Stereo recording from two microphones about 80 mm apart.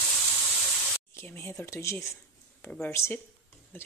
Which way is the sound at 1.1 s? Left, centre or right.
Left.